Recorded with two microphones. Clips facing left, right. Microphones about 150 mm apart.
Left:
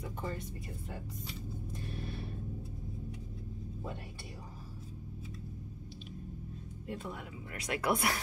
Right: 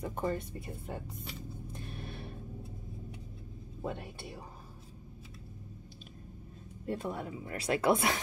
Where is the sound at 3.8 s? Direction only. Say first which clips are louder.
Right 8 dB; 60° right (ahead or behind).